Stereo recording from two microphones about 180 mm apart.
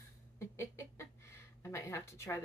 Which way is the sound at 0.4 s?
15° left (ahead or behind).